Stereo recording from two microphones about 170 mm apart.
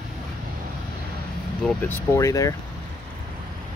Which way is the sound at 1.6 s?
10° left (ahead or behind).